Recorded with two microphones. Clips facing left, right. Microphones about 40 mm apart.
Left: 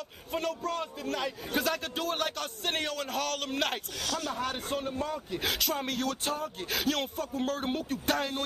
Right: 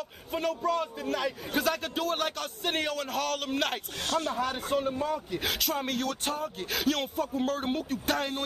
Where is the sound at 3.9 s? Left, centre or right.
Right.